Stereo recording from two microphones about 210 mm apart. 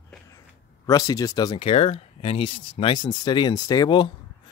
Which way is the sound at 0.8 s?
15° left (ahead or behind).